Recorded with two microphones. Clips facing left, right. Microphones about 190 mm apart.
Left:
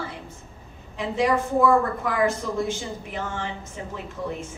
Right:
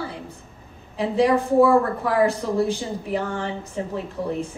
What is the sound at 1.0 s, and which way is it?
A woman's voice, 35° right (ahead or behind).